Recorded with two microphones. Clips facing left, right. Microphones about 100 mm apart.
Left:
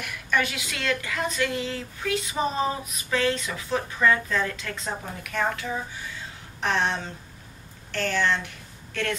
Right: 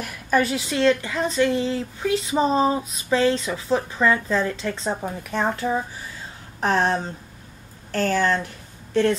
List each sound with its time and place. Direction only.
0.0 s a woman's voice: 35° right (ahead or behind)